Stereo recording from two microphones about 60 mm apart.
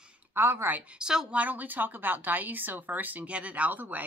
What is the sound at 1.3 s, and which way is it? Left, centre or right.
Speech, right.